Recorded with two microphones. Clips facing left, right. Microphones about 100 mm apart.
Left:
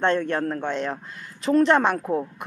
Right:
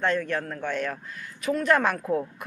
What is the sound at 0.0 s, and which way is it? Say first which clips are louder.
Speech: left 4 dB; 30° left (ahead or behind).